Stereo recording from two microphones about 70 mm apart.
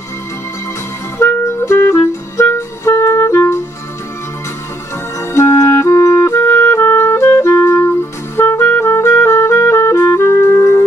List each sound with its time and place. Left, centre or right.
1.1 s music: left
5.2 s clarinet: left